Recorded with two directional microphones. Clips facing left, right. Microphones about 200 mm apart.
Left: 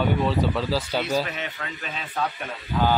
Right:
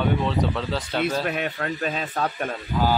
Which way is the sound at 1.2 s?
55° right (ahead or behind).